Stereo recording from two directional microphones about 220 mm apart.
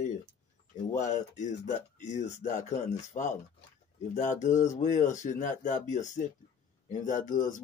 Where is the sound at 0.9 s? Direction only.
35° left (ahead or behind).